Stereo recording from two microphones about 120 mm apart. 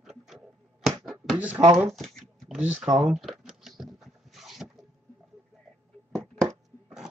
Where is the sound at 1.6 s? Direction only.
30° right (ahead or behind).